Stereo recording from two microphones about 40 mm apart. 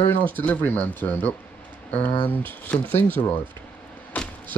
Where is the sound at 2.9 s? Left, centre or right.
Left.